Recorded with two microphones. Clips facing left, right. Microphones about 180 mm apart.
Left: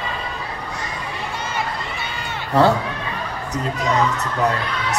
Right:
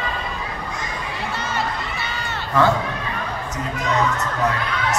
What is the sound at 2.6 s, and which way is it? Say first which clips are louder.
Speech: left 2 dB; 35° left (ahead or behind).